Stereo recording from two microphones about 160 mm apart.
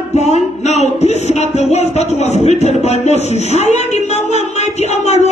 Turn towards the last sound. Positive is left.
turn(degrees=45)  # may be behind; listen again after turning